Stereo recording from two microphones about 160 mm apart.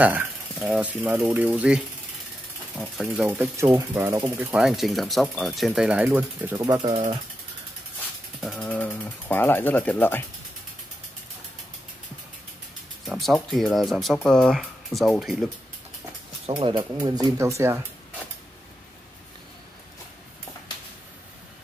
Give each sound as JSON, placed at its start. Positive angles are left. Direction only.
{"t": 0.0, "sound": "speech", "side_deg": -10}
{"t": 6.8, "sound": "speech", "side_deg": -35}
{"t": 8.4, "sound": "speech", "side_deg": 5}
{"t": 13.0, "sound": "speech", "side_deg": 0}
{"t": 16.4, "sound": "speech", "side_deg": -35}